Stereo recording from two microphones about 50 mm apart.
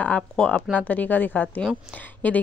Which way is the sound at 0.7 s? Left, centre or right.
Left.